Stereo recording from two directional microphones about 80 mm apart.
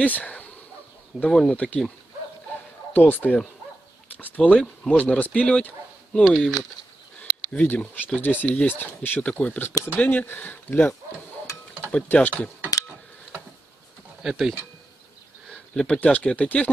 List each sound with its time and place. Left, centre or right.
0.0 s speech: centre
2.9 s speech: left
6.2 s speech: centre
7.5 s speech: left
14.2 s speech: centre
15.7 s speech: centre